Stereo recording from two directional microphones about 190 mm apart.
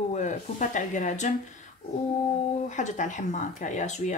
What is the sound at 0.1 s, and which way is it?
Speech, 40° left (ahead or behind).